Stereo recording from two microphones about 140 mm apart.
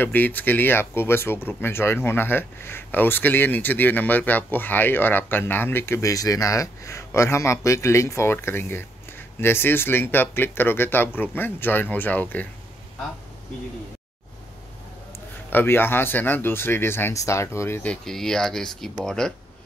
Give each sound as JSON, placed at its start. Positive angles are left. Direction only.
{"t": 0.0, "sound": "speech", "side_deg": 10}
{"t": 15.1, "sound": "speech", "side_deg": 15}
{"t": 18.0, "sound": "speech", "side_deg": 5}